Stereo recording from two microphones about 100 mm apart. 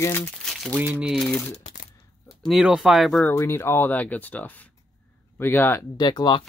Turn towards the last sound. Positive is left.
turn(degrees=50)  # may be behind; listen again after turning